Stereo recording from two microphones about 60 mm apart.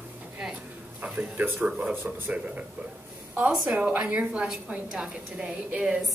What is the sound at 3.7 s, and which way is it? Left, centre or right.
A woman's voice, centre.